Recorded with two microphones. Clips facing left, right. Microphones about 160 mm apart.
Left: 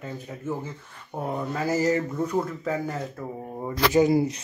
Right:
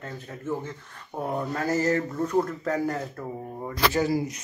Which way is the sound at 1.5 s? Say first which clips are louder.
Left 2 dB; 10° left (ahead or behind).